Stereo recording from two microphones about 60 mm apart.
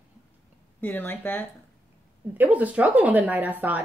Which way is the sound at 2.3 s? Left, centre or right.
Right.